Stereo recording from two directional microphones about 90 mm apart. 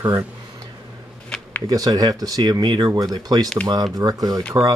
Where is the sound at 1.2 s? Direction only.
10° left (ahead or behind).